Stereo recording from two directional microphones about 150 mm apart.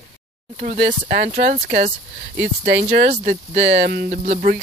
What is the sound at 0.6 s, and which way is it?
Speech, 55° right (ahead or behind).